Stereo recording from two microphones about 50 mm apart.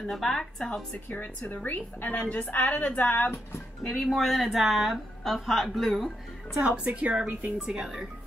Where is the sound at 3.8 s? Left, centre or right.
Left.